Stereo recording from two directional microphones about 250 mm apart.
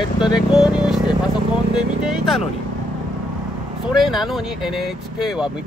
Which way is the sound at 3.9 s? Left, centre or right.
Centre.